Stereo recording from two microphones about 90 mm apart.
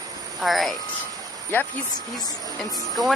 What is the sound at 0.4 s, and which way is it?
Speech, centre (ahead or behind).